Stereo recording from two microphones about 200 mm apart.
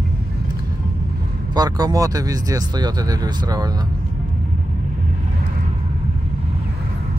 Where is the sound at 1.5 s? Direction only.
20° right (ahead or behind).